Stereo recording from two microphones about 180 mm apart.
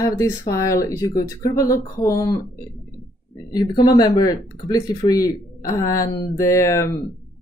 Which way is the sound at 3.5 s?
25° left (ahead or behind).